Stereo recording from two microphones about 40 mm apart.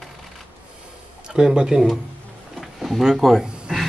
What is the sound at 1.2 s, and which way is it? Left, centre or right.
Speech, right.